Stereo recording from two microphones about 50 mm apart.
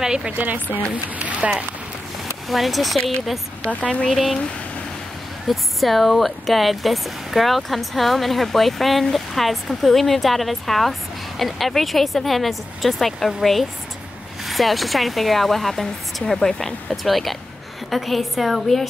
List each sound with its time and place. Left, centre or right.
0.0 s speech: centre
0.3 s speech: right
1.4 s speech: centre
2.4 s speech: centre
3.8 s speech: centre
4.1 s speech: centre
5.5 s speech: centre